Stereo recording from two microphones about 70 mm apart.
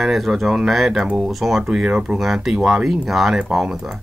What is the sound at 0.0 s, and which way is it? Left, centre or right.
Speech, centre.